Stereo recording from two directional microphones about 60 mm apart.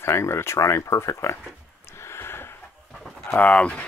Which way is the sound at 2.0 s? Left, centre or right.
Left.